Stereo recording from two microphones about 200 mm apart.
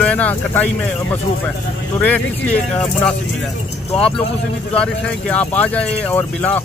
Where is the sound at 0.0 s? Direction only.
5° left (ahead or behind).